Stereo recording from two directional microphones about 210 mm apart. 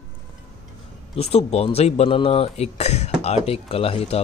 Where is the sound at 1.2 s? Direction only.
30° left (ahead or behind).